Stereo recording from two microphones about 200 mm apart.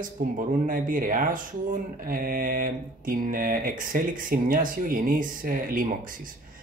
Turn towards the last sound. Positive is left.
turn(degrees=-45)  # may be behind; listen again after turning